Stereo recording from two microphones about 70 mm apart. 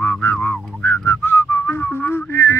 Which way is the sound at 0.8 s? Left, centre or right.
Left.